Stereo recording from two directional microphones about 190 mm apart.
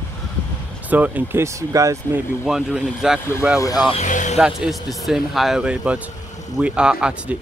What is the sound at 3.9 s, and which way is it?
Music, 40° left (ahead or behind).